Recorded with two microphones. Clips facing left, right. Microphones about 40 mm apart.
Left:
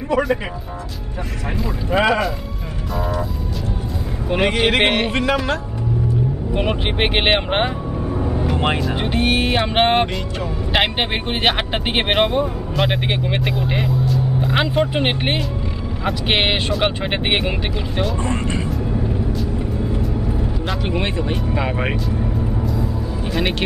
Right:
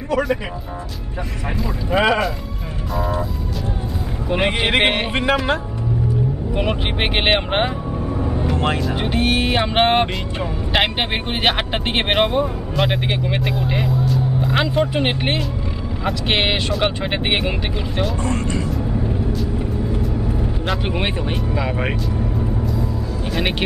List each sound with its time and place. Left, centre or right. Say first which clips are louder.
1.6 s speech: even; centre
4.5 s speech: left 1 dB; centre
6.5 s speech: left 2 dB; centre
8.5 s speech: left 1 dB; centre
8.8 s speech: even; centre
18.2 s speech: even; left
18.7 s vehicle: even; centre
20.8 s speech: left 1 dB; centre
21.5 s speech: even; centre